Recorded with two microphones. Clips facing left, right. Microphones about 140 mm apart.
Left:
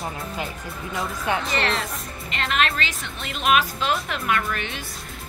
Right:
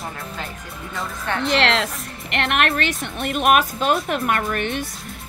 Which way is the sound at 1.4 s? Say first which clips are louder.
Right 6 dB; 85° right.